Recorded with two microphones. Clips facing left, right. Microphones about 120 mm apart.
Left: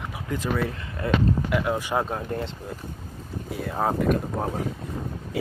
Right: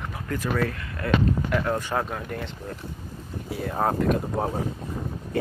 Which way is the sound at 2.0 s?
30° left (ahead or behind).